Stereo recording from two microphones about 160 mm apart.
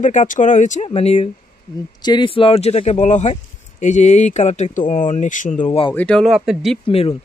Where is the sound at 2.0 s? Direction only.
30° left (ahead or behind); by 5.6 s 55° left (ahead or behind).